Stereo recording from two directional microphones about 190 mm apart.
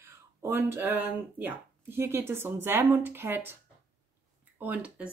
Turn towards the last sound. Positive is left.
turn(degrees=-5)  # may be behind; listen again after turning